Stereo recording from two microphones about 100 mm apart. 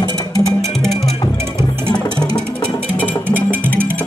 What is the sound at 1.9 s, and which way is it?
Music, 10° left (ahead or behind).